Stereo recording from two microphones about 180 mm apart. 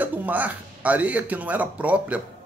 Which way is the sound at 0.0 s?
10° right (ahead or behind).